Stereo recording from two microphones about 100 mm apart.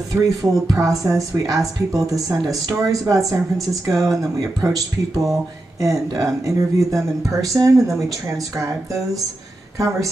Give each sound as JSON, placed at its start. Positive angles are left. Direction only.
{"t": 0.1, "sound": "speech", "side_deg": -35}